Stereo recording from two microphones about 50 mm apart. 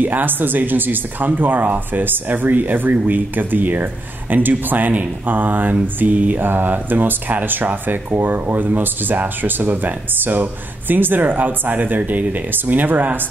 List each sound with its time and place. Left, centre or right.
0.0 s speech: right